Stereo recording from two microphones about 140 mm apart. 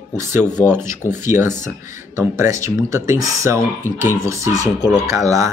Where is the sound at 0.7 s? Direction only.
20° right (ahead or behind).